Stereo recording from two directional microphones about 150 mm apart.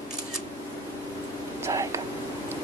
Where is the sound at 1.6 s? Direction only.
20° right (ahead or behind).